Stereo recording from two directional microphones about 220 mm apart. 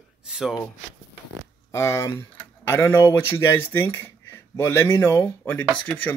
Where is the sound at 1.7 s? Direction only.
10° left (ahead or behind).